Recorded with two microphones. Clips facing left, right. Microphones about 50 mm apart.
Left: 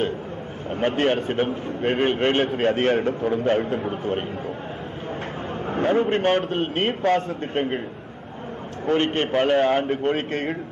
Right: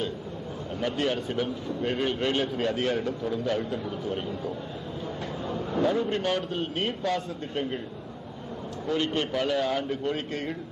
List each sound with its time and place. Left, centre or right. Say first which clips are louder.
0.7 s a man's voice: left 7 dB; left
5.5 s a man's voice: left 4 dB; left
8.8 s a man's voice: left 6 dB; left